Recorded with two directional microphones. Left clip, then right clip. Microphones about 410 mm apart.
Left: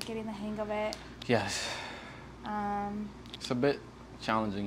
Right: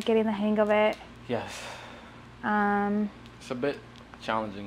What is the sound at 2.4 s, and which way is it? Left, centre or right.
Speech, right.